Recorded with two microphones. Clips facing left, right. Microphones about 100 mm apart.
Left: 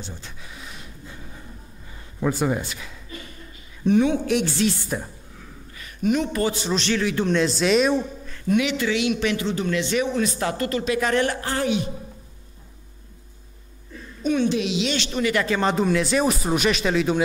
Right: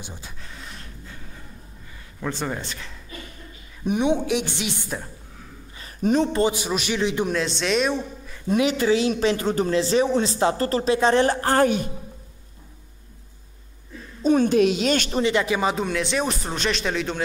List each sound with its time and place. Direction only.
0.0 s a man's voice: 15° right (ahead or behind)
0.4 s a sound: 5° left (ahead or behind)
2.1 s speech: 10° left (ahead or behind)
3.8 s a man's voice: 20° right (ahead or behind)
5.8 s speech: 35° right (ahead or behind)
6.5 s a man's voice: 10° right (ahead or behind)
7.0 s a man's voice: 20° right (ahead or behind)
7.2 s speech: centre (ahead or behind)
8.5 s speech: 35° right (ahead or behind)
11.4 s a woman's voice: 45° right (ahead or behind)
14.2 s a woman's voice: 40° right (ahead or behind)
15.3 s a man's voice: 15° right (ahead or behind)
15.6 s speech: centre (ahead or behind)